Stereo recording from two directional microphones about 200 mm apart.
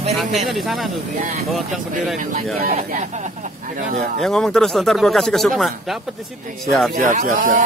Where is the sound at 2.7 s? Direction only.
35° right (ahead or behind).